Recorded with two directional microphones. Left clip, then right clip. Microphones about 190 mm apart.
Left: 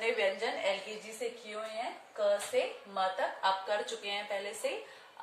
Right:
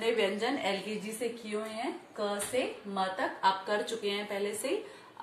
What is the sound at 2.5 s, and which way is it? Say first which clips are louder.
A woman's voice: even; 15° left (ahead or behind).